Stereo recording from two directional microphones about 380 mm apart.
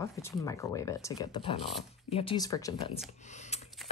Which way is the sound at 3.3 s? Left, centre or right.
Centre.